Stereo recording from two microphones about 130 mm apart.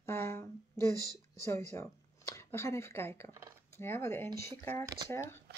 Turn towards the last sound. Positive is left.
turn(degrees=20)  # may be behind; listen again after turning